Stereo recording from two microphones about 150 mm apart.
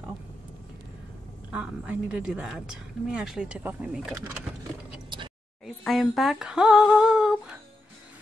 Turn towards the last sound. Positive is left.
turn(degrees=-5)  # may be behind; listen again after turning